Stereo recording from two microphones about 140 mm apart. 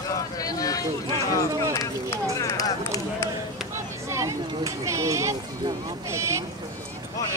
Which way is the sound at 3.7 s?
20° right (ahead or behind).